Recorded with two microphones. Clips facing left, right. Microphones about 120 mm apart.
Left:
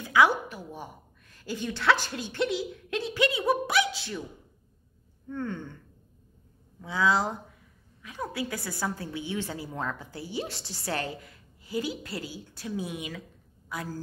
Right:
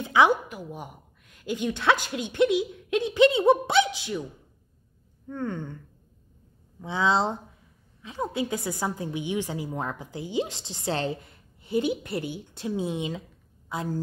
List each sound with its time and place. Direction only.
0.0 s a woman's voice: 25° right (ahead or behind)
5.3 s a sound: 15° right (ahead or behind)
6.8 s a woman's voice: 25° right (ahead or behind)